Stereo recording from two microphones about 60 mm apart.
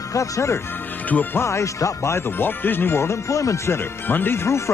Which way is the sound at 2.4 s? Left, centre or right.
Left.